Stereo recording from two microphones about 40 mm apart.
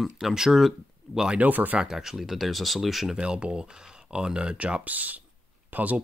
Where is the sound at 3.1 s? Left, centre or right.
Right.